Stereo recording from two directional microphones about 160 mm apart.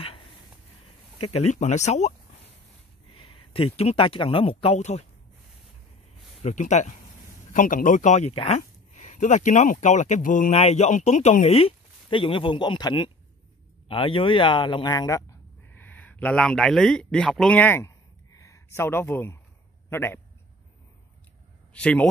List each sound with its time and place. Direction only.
1.3 s speech: 45° left (ahead or behind)
3.2 s speech: 35° left (ahead or behind)
6.4 s speech: 50° left (ahead or behind)
10.5 s speech: 40° left (ahead or behind); by 15.2 s 20° left (ahead or behind)
15.7 s a man's voice: 10° left (ahead or behind)
21.7 s a man's voice: 5° left (ahead or behind)